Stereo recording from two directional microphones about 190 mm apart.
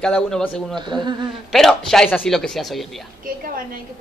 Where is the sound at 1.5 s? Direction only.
Centre (ahead or behind).